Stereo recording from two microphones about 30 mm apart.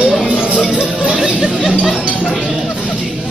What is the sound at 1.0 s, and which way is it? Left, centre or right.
Speech, right.